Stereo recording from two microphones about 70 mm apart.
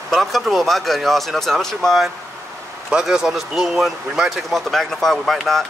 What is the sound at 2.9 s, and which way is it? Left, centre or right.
Speech, centre.